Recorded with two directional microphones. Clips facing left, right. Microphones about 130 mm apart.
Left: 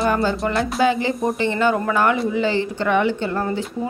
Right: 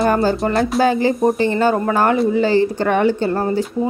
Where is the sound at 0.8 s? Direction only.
45° right (ahead or behind).